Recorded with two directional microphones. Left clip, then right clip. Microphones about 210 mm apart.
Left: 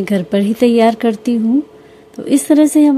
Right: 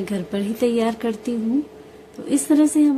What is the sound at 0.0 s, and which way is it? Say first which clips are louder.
A woman's voice: left 10 dB; 35° left (ahead or behind).